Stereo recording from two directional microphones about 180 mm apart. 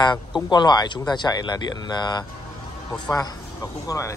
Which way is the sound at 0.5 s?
25° left (ahead or behind).